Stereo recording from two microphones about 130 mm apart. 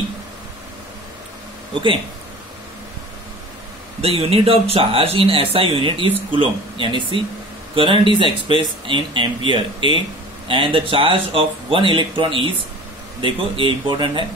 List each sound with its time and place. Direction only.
4.0 s speech: 50° right (ahead or behind)